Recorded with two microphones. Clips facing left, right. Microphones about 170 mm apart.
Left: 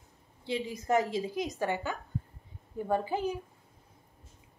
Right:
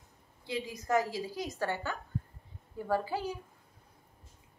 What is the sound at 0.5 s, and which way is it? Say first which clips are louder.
A woman's voice: left 2 dB; 25° left (ahead or behind).